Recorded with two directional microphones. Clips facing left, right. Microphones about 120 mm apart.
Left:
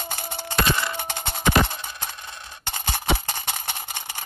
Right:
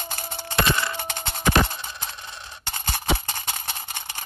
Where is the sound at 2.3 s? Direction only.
25° left (ahead or behind).